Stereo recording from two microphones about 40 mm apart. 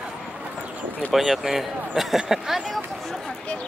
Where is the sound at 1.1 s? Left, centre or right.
Centre.